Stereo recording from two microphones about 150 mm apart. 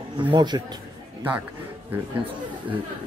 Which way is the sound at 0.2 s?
30° right (ahead or behind).